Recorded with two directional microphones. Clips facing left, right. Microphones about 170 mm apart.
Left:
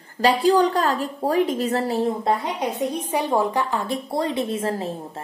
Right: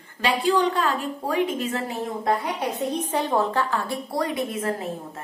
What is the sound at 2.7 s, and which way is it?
A woman's voice, 10° left (ahead or behind).